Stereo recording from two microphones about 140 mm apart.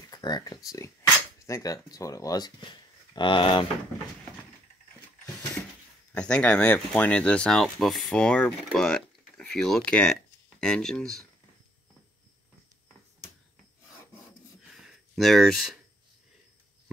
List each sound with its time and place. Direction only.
0.1 s speech: 30° left (ahead or behind)
6.1 s speech: 10° left (ahead or behind)
14.7 s a sound: centre (ahead or behind)